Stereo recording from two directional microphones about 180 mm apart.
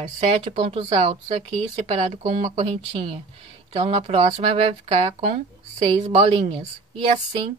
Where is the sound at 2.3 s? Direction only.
35° right (ahead or behind).